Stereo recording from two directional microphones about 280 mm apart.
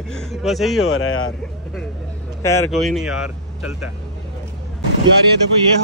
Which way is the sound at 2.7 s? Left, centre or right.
Centre.